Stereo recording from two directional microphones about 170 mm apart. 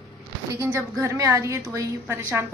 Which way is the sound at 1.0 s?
15° right (ahead or behind).